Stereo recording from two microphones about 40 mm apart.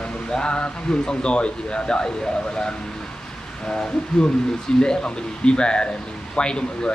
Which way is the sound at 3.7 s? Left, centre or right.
Left.